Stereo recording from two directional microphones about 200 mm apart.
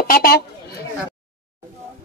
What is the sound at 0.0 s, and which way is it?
Chatter, 45° left (ahead or behind).